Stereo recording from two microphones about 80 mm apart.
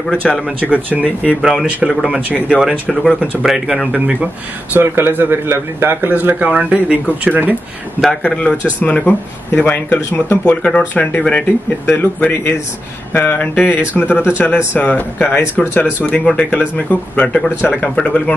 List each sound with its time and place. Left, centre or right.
0.1 s speech: centre
1.4 s speech: centre
2.9 s speech: centre
4.7 s speech: right
8.2 s speech: centre